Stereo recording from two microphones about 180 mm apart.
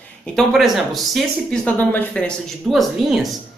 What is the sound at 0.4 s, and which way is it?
Speech, centre (ahead or behind).